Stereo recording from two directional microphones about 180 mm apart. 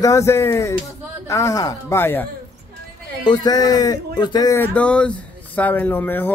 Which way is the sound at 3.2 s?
25° left (ahead or behind).